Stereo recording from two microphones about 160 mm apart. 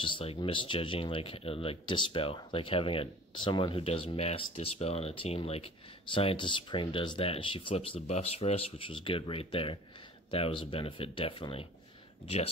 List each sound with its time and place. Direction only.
0.0 s speech: 35° left (ahead or behind)